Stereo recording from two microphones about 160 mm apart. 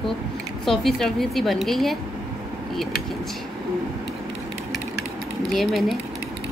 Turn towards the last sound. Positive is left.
turn(degrees=0)  # may be behind; listen again after turning